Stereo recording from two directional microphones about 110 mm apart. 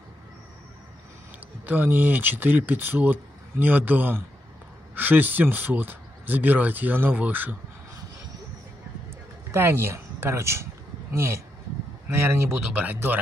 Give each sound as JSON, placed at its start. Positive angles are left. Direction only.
{"t": 1.7, "sound": "speech", "side_deg": -15}
{"t": 9.5, "sound": "speech", "side_deg": -20}
{"t": 12.1, "sound": "speech", "side_deg": -25}
{"t": 12.4, "sound": "speech", "side_deg": -15}